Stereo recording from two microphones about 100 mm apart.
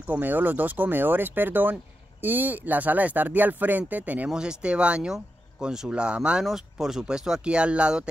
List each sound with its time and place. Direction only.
0.0 s speech: 15° right (ahead or behind)